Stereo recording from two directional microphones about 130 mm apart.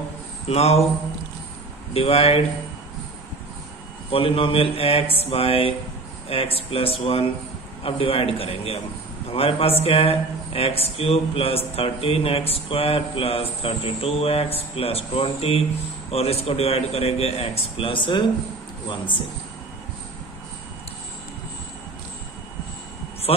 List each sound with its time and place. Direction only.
0.5 s a man's voice: 55° left (ahead or behind)
2.0 s a man's voice: 50° left (ahead or behind)
4.1 s a man's voice: 45° left (ahead or behind)